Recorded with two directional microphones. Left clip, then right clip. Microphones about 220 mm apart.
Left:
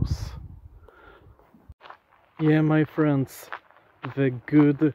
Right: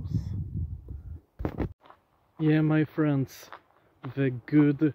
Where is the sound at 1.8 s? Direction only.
10° left (ahead or behind).